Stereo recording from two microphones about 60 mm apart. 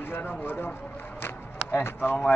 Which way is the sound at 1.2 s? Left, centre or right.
Left.